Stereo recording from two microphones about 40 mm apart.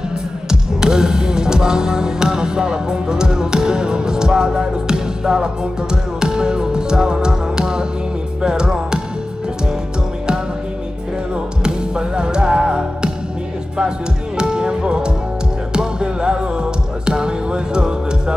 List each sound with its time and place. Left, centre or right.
0.5 s music: centre
11.6 s music: right